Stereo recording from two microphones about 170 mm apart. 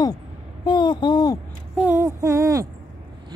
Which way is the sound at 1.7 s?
10° right (ahead or behind).